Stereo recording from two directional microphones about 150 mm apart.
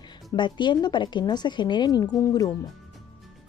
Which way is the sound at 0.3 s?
30° left (ahead or behind).